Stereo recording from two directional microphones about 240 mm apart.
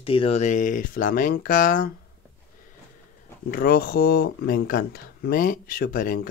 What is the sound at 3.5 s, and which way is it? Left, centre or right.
Speech, left.